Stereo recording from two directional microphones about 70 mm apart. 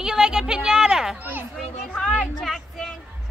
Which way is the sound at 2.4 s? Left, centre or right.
Centre.